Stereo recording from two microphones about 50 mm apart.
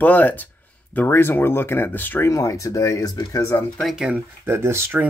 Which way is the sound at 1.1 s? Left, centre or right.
Left.